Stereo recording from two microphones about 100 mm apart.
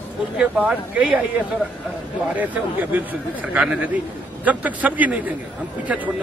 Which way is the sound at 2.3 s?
15° right (ahead or behind).